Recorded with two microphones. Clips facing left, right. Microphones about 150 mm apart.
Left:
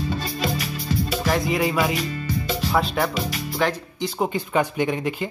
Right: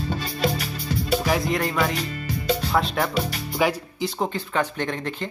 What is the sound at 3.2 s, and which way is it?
Speech, 45° right (ahead or behind).